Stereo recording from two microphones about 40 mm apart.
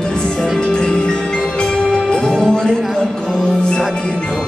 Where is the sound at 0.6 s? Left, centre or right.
Centre.